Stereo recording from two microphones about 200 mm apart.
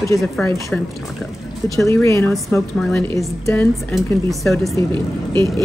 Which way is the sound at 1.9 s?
15° left (ahead or behind).